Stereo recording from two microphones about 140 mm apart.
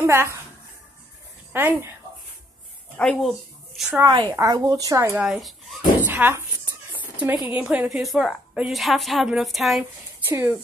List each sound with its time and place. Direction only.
0.0 s speech: 20° right (ahead or behind)
1.5 s speech: 15° right (ahead or behind)
3.0 s speech: centre (ahead or behind)
4.0 s speech: 25° right (ahead or behind)
5.1 s a woman's voice: 5° right (ahead or behind)
5.9 s a sound: 10° right (ahead or behind)
7.5 s a woman's voice: 10° right (ahead or behind)
10.2 s speech: 15° right (ahead or behind)